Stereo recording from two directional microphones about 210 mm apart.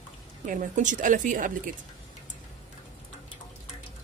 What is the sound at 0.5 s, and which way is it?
A woman's voice, 35° right (ahead or behind).